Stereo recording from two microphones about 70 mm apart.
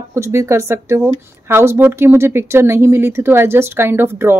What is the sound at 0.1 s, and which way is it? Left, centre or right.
Speech, right.